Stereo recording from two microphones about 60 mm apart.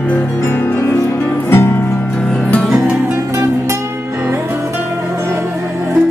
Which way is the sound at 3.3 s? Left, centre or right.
Right.